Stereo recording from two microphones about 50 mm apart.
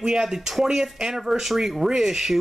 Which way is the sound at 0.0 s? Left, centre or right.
Centre.